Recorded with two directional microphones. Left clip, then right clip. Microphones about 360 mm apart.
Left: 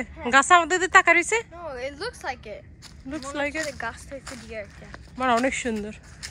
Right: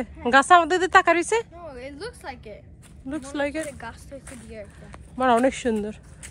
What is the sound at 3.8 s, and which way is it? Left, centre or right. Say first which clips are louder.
Speech: left 5 dB; centre.